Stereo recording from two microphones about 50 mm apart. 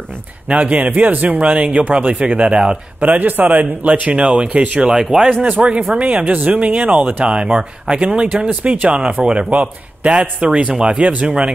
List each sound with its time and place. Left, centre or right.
0.5 s a man's voice: right
3.0 s a man's voice: right
4.1 s a man's voice: centre
4.9 s speech: centre
5.4 s a man's voice: right
8.3 s a man's voice: right